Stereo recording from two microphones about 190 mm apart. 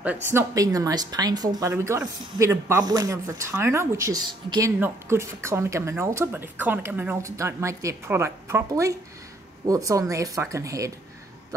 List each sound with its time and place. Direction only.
0.0 s speech: 10° right (ahead or behind)